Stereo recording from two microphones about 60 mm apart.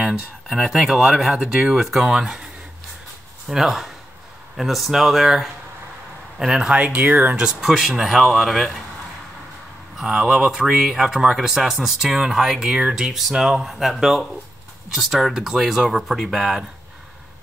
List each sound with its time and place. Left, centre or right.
0.5 s speech: centre
3.4 s speech: centre; by 7.3 s right
7.3 s speech: centre
9.9 s speech: centre